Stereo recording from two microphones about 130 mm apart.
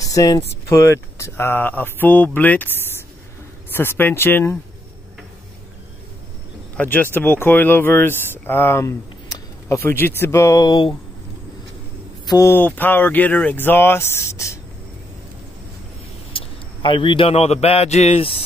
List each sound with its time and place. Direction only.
0.0 s a sound: 25° left (ahead or behind)
0.7 s speech: 25° left (ahead or behind)
6.8 s speech: 15° left (ahead or behind)
10.6 s speech: 35° left (ahead or behind)
12.3 s speech: 20° left (ahead or behind)
16.3 s a man's voice: 40° left (ahead or behind)